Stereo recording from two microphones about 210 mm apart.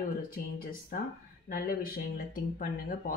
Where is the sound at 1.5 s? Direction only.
40° left (ahead or behind).